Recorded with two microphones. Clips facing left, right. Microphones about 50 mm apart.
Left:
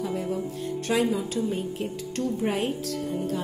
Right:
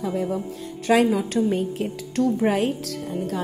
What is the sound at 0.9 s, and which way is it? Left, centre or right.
Speech, right.